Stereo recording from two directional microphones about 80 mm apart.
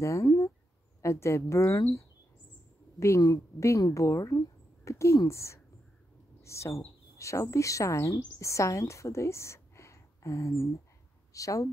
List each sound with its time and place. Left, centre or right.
0.0 s a woman's voice: left
3.2 s a woman's voice: left